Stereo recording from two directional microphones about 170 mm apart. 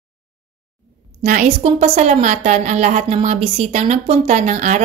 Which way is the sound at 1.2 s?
45° right (ahead or behind).